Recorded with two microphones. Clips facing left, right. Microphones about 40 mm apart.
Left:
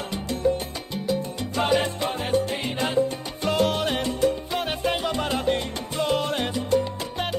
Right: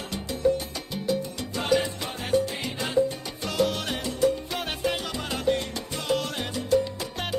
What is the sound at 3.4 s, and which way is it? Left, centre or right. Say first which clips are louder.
Salsa music: left 3 dB; left.